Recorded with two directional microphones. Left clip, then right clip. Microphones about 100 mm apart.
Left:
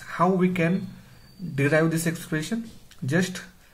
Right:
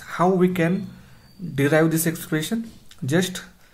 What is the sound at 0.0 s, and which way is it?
Speech, 35° right (ahead or behind).